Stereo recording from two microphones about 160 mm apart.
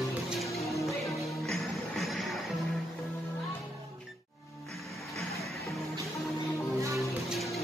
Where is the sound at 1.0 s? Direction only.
Centre (ahead or behind).